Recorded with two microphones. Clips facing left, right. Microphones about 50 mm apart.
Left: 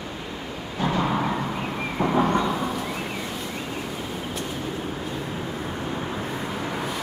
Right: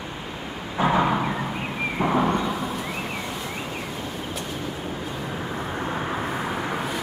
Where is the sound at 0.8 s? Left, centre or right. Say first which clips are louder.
Right 4 dB; right.